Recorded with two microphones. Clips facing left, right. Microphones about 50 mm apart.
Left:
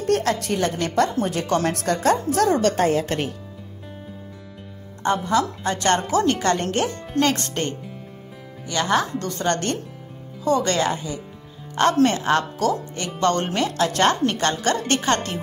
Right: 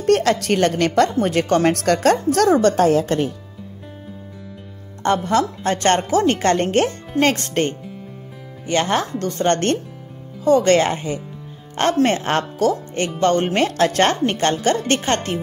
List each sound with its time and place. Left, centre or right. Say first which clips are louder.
0.0 s speech: right 5 dB; right
1.2 s speech: right 5 dB; right
5.0 s speech: right 3 dB; right
5.6 s a woman's voice: right 3 dB; right
13.5 s a woman's voice: right 4 dB; right